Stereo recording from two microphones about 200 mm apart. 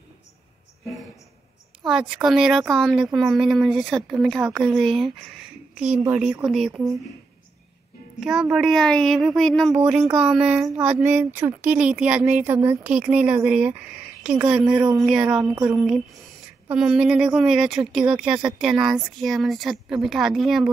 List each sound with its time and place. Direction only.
1.9 s speech: 5° right (ahead or behind)
8.2 s speech: 5° right (ahead or behind)